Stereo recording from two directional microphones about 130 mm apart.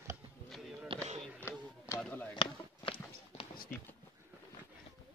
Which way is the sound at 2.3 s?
40° left (ahead or behind).